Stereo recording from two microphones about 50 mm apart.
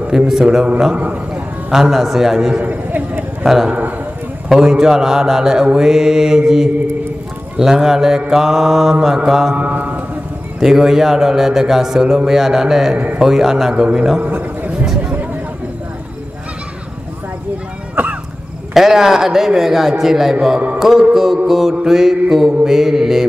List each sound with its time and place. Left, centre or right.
0.3 s a man's voice: centre
0.9 s a man's voice: right
1.7 s a man's voice: centre
2.6 s a sound: right
3.4 s a man's voice: centre
9.6 s mantra: right
10.6 s a man's voice: centre
12.9 s a man's voice: right
13.2 s a man's voice: centre
14.3 s a sound: right
18.0 s cough: right
18.7 s a man's voice: centre